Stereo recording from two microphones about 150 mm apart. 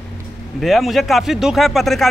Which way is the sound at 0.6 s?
Centre (ahead or behind).